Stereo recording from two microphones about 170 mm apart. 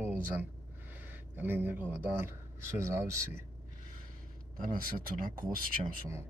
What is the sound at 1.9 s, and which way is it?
Speech, 15° right (ahead or behind).